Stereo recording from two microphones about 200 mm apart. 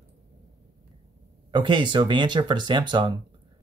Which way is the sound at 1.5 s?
25° right (ahead or behind).